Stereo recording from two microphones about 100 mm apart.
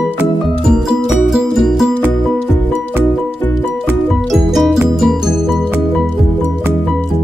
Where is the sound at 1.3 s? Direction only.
Centre (ahead or behind).